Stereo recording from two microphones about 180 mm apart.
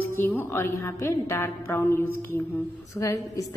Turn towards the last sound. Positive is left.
turn(degrees=20)  # may be behind; listen again after turning